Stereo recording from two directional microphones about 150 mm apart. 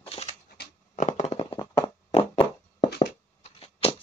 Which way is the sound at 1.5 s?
25° left (ahead or behind).